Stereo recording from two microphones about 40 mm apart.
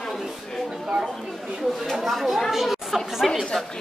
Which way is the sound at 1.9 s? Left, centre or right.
Centre.